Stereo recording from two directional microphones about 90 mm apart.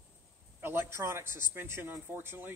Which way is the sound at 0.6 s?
25° right (ahead or behind).